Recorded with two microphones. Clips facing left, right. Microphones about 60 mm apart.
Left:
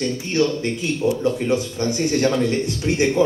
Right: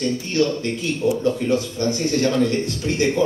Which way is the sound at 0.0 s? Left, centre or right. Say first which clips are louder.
Even; left.